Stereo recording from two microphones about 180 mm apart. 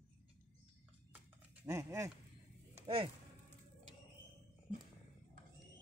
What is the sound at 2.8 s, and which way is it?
Speech, 30° right (ahead or behind).